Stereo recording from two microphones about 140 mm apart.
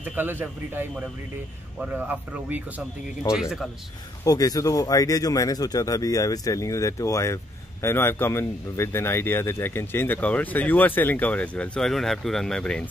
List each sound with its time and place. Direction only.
0.0 s speech: 10° right (ahead or behind)
4.2 s a man's voice: 25° left (ahead or behind); by 12.8 s 5° left (ahead or behind)